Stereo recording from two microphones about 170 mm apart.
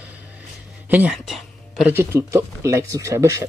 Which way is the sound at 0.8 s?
10° right (ahead or behind).